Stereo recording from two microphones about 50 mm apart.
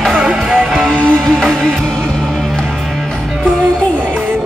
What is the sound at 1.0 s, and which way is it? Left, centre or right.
Music, centre.